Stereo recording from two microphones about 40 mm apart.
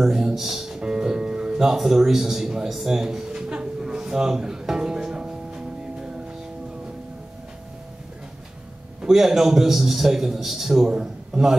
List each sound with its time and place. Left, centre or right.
0.0 s speech: centre
2.8 s a sound: centre
9.0 s a man's voice: centre
10.9 s a man's voice: centre